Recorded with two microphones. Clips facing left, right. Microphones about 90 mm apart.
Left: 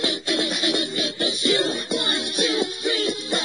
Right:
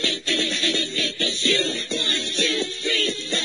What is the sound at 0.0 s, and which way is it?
Music, 15° left (ahead or behind).